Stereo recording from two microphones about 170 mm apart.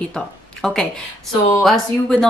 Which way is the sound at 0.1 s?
5° left (ahead or behind).